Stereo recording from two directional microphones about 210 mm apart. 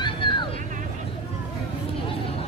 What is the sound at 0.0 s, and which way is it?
Vehicle, 20° left (ahead or behind).